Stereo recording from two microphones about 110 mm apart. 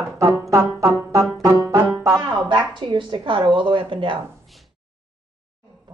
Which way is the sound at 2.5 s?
45° right (ahead or behind).